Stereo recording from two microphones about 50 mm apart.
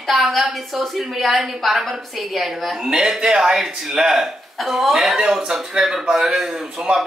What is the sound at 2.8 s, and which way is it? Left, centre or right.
A man's voice, centre.